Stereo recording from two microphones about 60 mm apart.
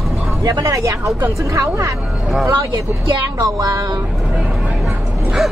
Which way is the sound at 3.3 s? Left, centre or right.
Right.